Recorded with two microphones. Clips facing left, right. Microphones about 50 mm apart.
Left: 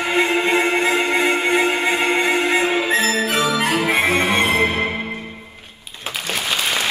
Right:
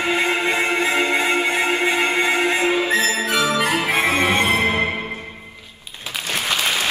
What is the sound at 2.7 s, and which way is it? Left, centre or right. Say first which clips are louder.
Music: even; left.